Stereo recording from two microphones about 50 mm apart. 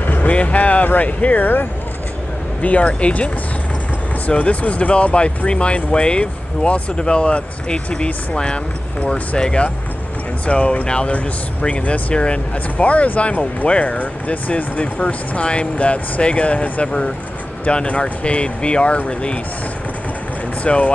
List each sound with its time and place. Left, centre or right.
0.0 s speech: left
2.6 s speech: left
4.3 s speech: left
20.6 s speech: left